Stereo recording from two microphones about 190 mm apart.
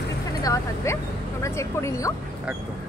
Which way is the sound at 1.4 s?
15° left (ahead or behind).